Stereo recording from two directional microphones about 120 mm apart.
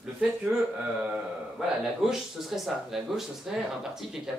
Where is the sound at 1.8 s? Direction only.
5° right (ahead or behind).